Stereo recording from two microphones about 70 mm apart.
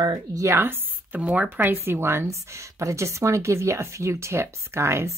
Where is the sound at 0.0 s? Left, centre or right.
Right.